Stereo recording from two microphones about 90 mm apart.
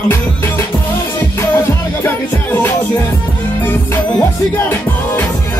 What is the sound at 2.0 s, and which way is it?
Music, 20° left (ahead or behind).